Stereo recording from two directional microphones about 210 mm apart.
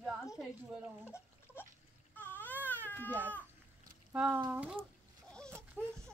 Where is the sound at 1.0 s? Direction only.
10° left (ahead or behind).